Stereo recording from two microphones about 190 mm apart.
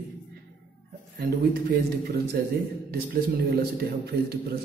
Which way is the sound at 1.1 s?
55° right (ahead or behind).